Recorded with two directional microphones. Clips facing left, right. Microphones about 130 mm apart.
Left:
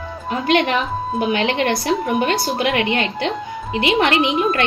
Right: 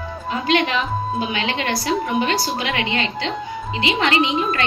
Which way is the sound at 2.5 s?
55° left (ahead or behind).